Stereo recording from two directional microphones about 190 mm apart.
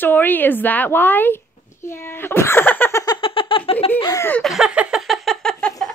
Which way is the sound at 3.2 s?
30° left (ahead or behind).